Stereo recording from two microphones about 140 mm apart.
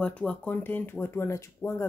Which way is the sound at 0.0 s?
10° left (ahead or behind).